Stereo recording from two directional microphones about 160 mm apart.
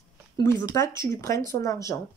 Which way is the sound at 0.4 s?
20° left (ahead or behind).